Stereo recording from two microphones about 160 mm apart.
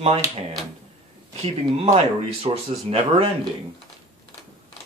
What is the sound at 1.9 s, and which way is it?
Speech, 35° right (ahead or behind).